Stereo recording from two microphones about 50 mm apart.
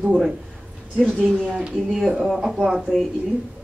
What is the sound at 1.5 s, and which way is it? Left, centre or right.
Speech, centre.